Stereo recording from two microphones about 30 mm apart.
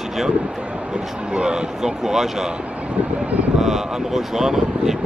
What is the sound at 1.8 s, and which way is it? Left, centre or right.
Speech, centre.